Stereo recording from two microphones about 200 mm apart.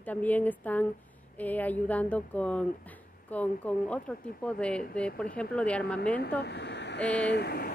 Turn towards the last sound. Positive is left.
turn(degrees=55)  # may be behind; listen again after turning